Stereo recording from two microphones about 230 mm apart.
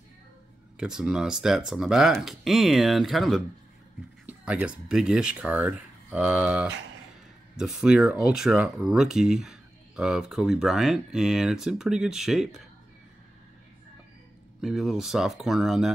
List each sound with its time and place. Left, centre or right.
0.7 s speech: centre
14.6 s speech: centre